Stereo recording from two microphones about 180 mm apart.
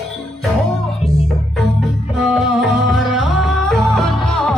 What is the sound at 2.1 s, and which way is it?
Music, 5° right (ahead or behind).